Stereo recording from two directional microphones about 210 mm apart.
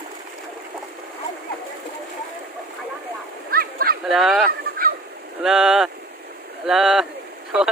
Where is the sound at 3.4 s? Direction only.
45° right (ahead or behind).